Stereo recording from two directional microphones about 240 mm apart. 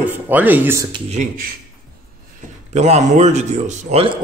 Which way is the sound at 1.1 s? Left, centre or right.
Right.